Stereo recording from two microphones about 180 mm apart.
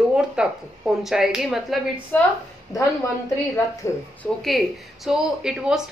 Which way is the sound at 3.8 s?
15° left (ahead or behind).